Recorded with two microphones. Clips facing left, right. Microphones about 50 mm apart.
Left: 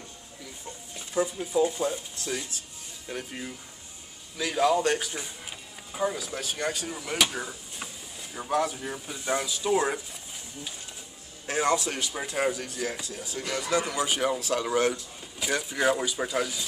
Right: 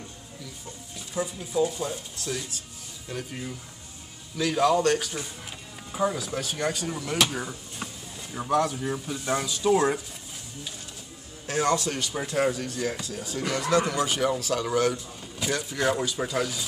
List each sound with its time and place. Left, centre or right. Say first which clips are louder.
0.9 s speech: left 3 dB; left
5.9 s speech: right 3 dB; centre
11.4 s speech: right 1 dB; centre